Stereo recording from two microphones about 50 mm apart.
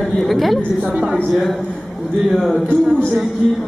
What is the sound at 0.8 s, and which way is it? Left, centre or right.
Speech, right.